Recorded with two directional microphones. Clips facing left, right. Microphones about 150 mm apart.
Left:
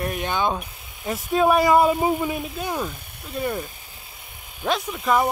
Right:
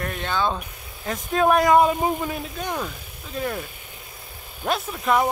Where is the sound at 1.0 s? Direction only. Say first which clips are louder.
Left 1 dB; 5° left (ahead or behind).